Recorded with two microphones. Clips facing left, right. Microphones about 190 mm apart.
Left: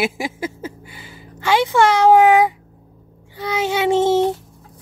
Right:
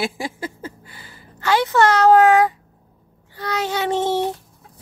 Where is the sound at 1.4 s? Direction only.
10° left (ahead or behind).